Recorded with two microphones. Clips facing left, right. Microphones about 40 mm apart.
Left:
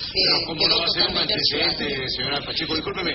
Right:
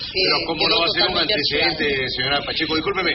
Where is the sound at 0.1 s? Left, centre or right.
Right.